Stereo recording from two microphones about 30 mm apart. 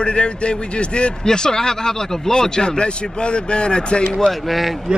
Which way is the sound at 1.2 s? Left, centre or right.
Left.